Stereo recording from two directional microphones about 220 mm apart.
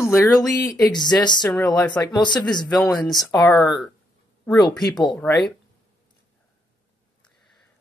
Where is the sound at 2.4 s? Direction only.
20° left (ahead or behind).